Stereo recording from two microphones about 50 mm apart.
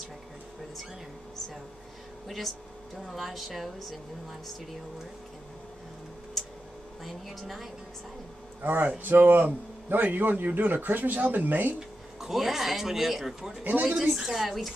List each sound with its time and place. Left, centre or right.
2.2 s speech: centre
7.1 s speech: centre
8.6 s speech: right
12.2 s a woman's voice: centre